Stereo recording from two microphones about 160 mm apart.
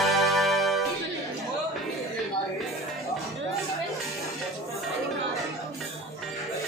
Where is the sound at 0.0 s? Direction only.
Centre (ahead or behind).